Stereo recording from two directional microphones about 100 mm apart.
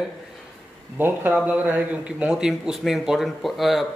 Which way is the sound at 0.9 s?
20° right (ahead or behind).